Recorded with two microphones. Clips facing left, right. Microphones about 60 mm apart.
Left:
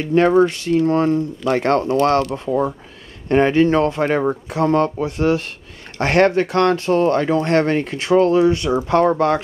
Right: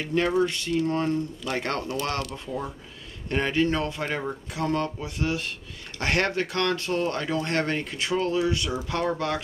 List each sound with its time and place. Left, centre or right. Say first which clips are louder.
0.1 s speech: left 10 dB; left
0.8 s speech: left 9 dB; left